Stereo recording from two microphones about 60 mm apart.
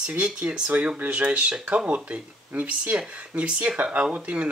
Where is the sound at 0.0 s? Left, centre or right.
Centre.